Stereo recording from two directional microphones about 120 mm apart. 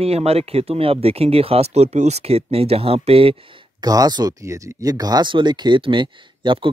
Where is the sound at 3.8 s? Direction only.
35° right (ahead or behind).